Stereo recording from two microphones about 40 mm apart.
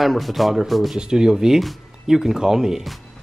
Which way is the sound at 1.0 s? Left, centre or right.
Centre.